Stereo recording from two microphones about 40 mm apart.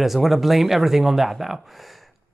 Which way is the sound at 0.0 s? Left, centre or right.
Centre.